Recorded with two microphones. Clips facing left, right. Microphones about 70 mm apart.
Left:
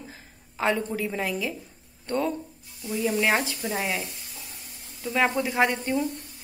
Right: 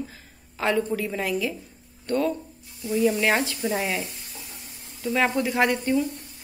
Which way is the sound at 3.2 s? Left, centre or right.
Centre.